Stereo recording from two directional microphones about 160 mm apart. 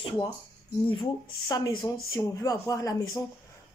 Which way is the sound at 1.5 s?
25° left (ahead or behind).